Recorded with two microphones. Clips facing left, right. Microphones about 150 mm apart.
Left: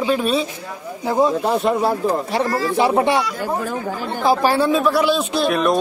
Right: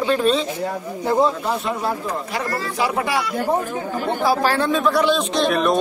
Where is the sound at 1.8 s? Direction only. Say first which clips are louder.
Left 5 dB; 30° left (ahead or behind).